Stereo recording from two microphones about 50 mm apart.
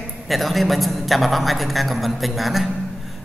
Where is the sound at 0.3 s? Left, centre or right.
Centre.